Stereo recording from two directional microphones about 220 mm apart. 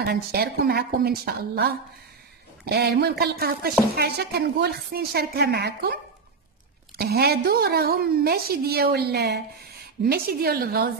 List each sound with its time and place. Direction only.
0.0 s a woman's voice: 45° right (ahead or behind)
7.0 s a woman's voice: 45° right (ahead or behind)